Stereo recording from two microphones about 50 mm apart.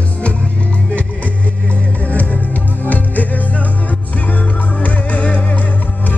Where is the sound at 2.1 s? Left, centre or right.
Left.